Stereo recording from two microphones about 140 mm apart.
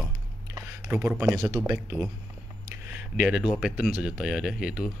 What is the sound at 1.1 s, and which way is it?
Speech, 20° right (ahead or behind).